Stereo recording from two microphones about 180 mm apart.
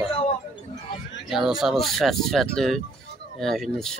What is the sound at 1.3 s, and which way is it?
Speech, centre (ahead or behind).